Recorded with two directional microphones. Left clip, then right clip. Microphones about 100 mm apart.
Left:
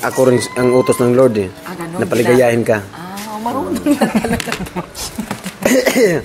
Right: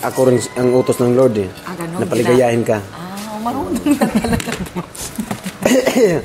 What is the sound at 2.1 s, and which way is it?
Speech, 10° left (ahead or behind).